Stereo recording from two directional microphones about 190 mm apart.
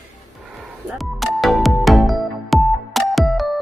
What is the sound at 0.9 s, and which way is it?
Music, centre (ahead or behind).